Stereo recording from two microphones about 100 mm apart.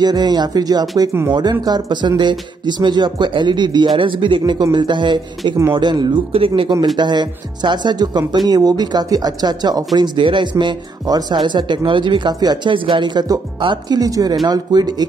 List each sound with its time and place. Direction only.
0.0 s speech: 45° right (ahead or behind)
6.3 s speech: 65° right (ahead or behind); by 12.7 s 45° right (ahead or behind)
12.7 s speech: 60° right (ahead or behind)
13.9 s speech: 40° right (ahead or behind)